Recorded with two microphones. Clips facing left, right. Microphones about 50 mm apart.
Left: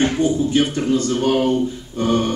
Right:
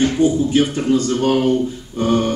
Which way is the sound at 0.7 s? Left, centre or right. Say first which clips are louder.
Right 2 dB; centre.